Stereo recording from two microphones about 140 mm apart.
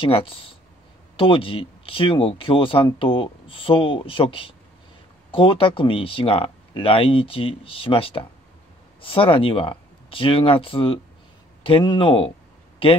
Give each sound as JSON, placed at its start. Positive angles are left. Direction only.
{"t": 0.0, "sound": "speech", "side_deg": 40}